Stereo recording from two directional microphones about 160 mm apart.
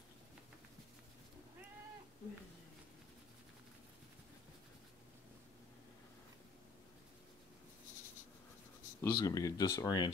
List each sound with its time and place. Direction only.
9.0 s speech: 20° left (ahead or behind)